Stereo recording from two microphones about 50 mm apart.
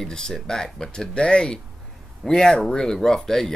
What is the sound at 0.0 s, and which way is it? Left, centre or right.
Speech, centre.